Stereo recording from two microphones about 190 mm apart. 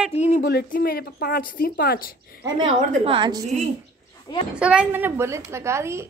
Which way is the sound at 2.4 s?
25° right (ahead or behind).